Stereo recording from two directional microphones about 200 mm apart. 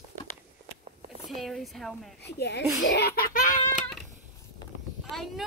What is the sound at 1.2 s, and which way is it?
Speech, centre (ahead or behind).